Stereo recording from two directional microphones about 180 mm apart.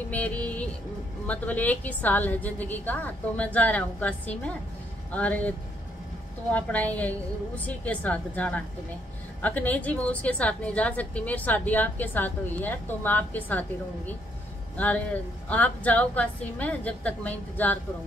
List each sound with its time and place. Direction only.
0.1 s a woman's voice: 10° left (ahead or behind)
6.5 s a woman's voice: 10° left (ahead or behind)
15.4 s a woman's voice: 10° left (ahead or behind)